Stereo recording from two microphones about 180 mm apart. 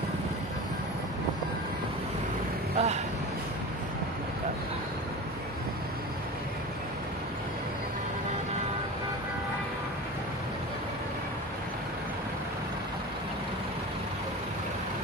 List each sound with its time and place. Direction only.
2.7 s speech: 35° right (ahead or behind)